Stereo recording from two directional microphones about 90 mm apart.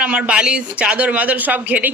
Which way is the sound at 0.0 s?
15° right (ahead or behind).